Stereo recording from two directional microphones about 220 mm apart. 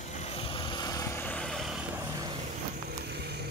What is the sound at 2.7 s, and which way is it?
Vehicle, 45° right (ahead or behind).